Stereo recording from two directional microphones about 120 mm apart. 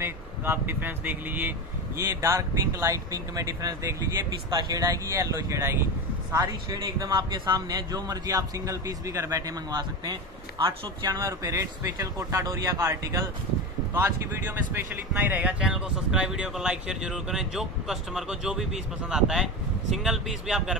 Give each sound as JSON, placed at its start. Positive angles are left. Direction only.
{"t": 0.0, "sound": "speech", "side_deg": -20}
{"t": 6.3, "sound": "a man's voice", "side_deg": -35}
{"t": 15.3, "sound": "speech", "side_deg": -10}